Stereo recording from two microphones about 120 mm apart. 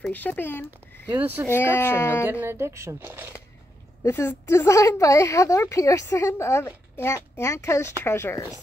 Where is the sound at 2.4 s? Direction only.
20° right (ahead or behind).